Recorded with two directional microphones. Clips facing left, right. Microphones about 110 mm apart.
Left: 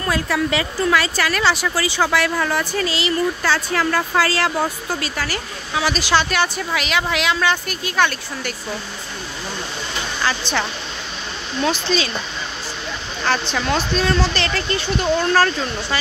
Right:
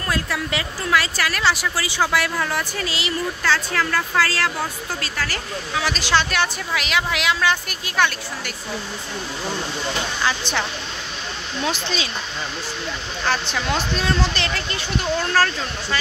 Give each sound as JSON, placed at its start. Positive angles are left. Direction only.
{"t": 0.0, "sound": "a woman's voice", "side_deg": 0}
{"t": 3.4, "sound": "a woman's voice", "side_deg": 15}
{"t": 10.2, "sound": "speech", "side_deg": -15}
{"t": 11.7, "sound": "speech", "side_deg": -15}
{"t": 13.2, "sound": "speech", "side_deg": -5}
{"t": 15.3, "sound": "speech", "side_deg": 5}